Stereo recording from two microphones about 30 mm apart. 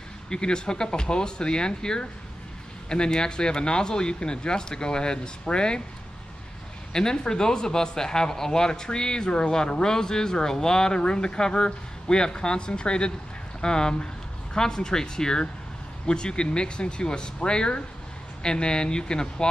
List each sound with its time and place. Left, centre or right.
0.3 s speech: left
6.9 s speech: left